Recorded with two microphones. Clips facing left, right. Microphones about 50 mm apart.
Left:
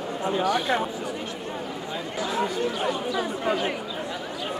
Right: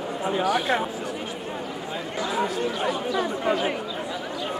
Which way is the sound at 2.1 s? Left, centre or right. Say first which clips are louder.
Right 1 dB; centre.